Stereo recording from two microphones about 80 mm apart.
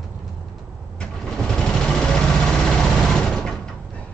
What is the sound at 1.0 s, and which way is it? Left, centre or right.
Sewing machine, centre.